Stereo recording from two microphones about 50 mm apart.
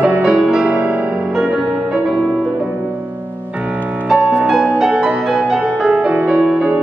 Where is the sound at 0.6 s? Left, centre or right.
Right.